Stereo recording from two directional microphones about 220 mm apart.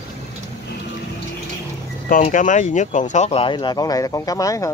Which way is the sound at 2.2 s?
35° left (ahead or behind).